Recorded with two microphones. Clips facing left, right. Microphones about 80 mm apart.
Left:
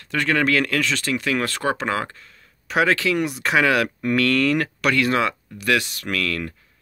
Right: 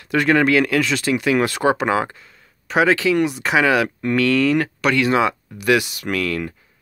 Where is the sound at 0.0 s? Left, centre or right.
Centre.